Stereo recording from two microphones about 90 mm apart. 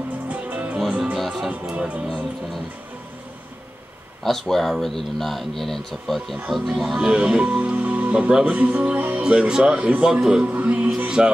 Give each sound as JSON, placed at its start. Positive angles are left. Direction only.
{"t": 0.3, "sound": "music", "side_deg": -15}
{"t": 1.5, "sound": "speech", "side_deg": -15}
{"t": 4.2, "sound": "speech", "side_deg": 5}
{"t": 10.5, "sound": "music", "side_deg": -20}